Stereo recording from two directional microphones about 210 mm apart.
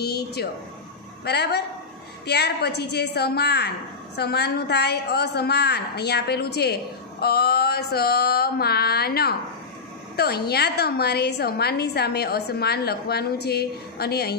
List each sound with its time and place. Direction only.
0.0 s a woman's voice: 50° left (ahead or behind)